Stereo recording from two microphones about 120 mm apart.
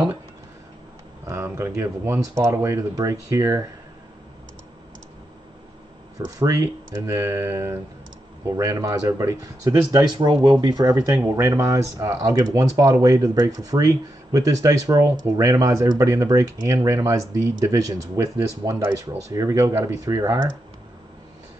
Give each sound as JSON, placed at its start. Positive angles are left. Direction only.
{"t": 1.2, "sound": "speech", "side_deg": -25}
{"t": 6.1, "sound": "speech", "side_deg": -30}